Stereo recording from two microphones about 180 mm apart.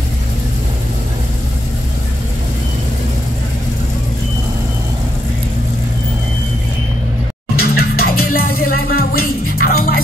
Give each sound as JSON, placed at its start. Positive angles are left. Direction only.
{"t": 7.5, "sound": "music", "side_deg": 55}